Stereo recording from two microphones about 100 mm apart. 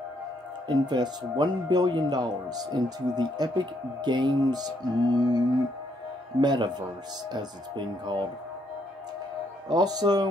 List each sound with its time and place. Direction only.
0.7 s speech: 45° right (ahead or behind)
6.4 s speech: 45° right (ahead or behind)
9.7 s speech: 40° right (ahead or behind)